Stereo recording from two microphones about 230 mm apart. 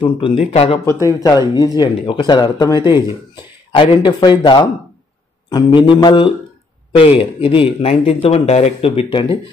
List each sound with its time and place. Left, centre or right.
0.0 s speech: left
1.0 s speech: centre